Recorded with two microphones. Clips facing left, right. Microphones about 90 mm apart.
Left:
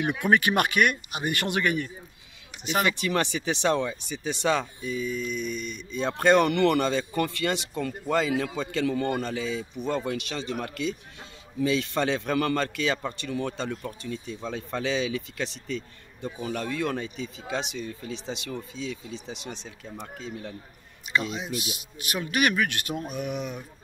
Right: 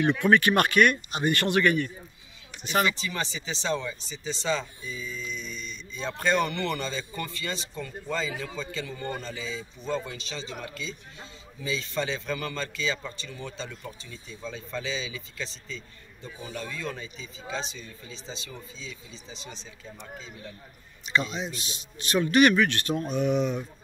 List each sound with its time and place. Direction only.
0.0 s speech: 15° left (ahead or behind)
2.8 s speech: 60° left (ahead or behind)
21.1 s speech: 5° left (ahead or behind)